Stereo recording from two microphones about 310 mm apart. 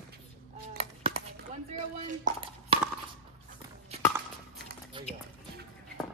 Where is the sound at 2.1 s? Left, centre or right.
Centre.